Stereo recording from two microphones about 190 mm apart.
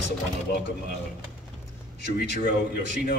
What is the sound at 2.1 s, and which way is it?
Speech, 55° left (ahead or behind).